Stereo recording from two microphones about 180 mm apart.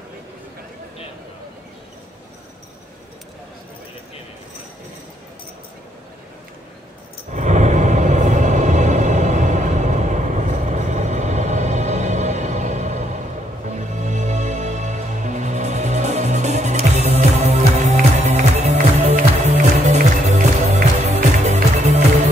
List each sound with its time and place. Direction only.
7.3 s music: 40° right (ahead or behind)